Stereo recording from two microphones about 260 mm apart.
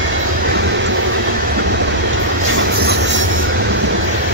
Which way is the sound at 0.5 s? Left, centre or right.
Right.